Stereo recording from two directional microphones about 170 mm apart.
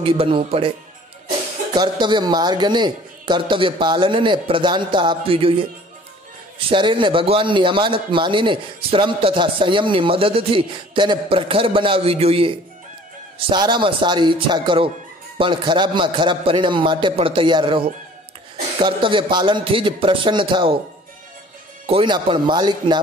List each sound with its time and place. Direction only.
0.0 s a man's voice: 35° right (ahead or behind)
1.8 s a man's voice: 25° right (ahead or behind)
6.7 s a man's voice: 30° right (ahead or behind)
21.8 s a man's voice: 30° right (ahead or behind)